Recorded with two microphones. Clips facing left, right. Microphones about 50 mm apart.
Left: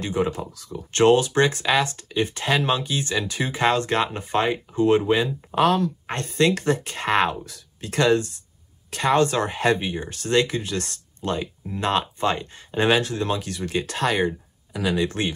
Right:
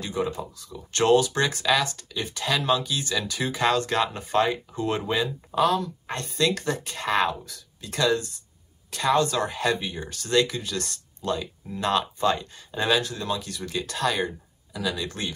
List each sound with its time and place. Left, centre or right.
0.0 s speech: left
5.5 s speech: left